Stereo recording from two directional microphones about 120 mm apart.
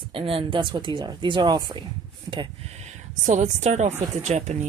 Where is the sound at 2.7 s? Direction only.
80° right.